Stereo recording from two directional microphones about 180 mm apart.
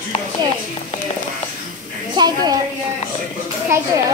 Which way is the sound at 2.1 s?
25° right (ahead or behind).